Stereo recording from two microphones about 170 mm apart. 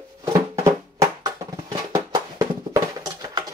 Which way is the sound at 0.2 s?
20° right (ahead or behind).